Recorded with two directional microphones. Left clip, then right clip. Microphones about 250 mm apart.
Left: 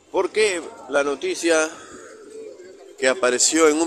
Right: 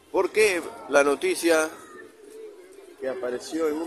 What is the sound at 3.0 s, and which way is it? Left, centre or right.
Speech, left.